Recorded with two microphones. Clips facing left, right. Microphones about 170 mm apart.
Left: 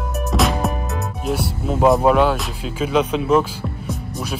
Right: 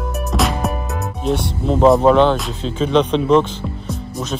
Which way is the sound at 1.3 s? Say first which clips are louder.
Right 4 dB; 5° left (ahead or behind).